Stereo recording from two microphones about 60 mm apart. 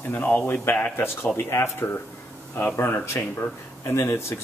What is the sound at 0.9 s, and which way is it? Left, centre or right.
Speech, left.